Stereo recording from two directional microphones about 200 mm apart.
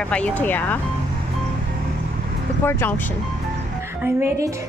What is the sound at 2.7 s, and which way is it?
Speech, 10° left (ahead or behind).